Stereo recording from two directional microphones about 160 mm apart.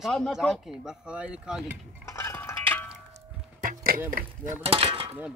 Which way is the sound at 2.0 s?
15° left (ahead or behind).